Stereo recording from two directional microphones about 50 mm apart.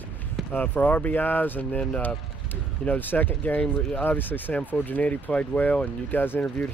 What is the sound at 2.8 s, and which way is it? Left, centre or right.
Speech, left.